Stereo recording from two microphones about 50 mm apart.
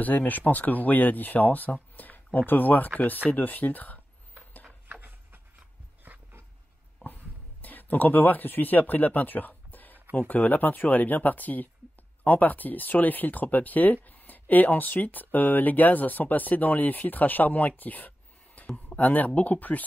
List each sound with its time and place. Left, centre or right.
0.0 s speech: left
6.0 s dog: right
7.6 s speech: left